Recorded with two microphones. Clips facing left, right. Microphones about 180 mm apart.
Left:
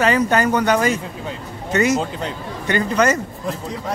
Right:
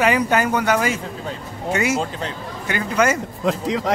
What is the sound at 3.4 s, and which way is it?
Speech, 90° right.